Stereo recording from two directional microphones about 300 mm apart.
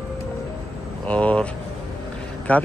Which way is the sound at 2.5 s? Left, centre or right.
Centre.